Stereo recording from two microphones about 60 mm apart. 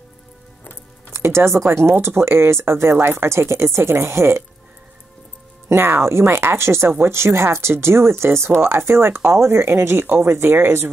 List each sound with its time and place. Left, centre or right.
1.1 s speech: right
5.7 s speech: right